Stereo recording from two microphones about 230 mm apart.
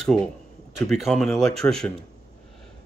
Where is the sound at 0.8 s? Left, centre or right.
Centre.